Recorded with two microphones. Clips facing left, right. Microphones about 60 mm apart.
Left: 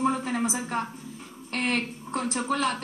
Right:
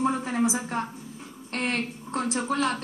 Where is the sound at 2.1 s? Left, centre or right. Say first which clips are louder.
Right 1 dB; right.